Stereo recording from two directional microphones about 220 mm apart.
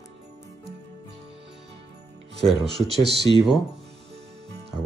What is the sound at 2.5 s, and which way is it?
Speech, centre (ahead or behind).